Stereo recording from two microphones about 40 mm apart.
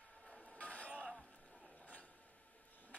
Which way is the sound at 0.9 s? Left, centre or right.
Right.